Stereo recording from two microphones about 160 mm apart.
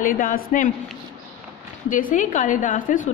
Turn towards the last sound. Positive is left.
turn(degrees=55)  # may be behind; listen again after turning